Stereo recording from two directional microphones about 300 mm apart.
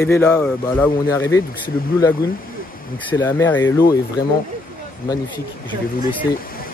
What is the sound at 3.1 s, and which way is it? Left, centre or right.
Speech, centre.